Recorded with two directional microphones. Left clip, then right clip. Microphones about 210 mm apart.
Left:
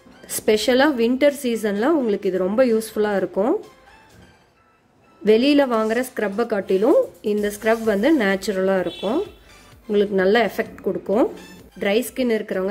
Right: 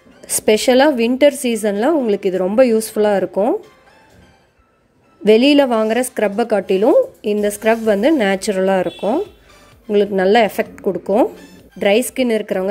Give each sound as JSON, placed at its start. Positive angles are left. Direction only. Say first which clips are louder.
{"t": 0.2, "sound": "a woman's voice", "louder": "right 5 dB", "side_deg": -25}
{"t": 5.2, "sound": "a woman's voice", "louder": "right 5 dB", "side_deg": -25}